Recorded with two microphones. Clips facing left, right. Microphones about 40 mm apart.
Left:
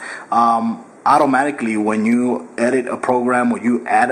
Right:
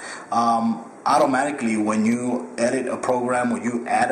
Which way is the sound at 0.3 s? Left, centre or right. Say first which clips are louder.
Left 5 dB; centre.